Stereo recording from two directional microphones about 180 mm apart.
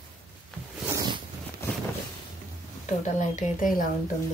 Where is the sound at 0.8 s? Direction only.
20° right (ahead or behind).